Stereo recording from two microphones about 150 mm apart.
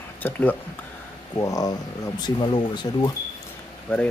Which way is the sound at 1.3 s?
25° left (ahead or behind).